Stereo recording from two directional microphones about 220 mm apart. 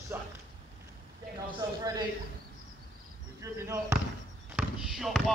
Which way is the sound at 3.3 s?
15° right (ahead or behind).